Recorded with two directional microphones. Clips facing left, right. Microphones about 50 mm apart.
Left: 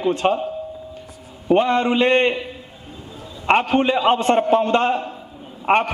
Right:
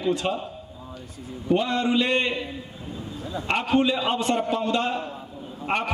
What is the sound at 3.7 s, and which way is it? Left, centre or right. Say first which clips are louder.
A man's voice: left 5 dB; left.